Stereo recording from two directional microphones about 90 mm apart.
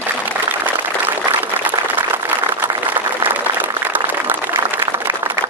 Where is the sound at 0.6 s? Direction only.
25° right (ahead or behind).